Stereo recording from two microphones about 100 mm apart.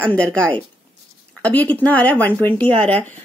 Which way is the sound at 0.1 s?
10° left (ahead or behind).